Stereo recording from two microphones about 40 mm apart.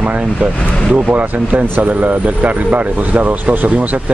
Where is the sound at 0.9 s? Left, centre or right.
Right.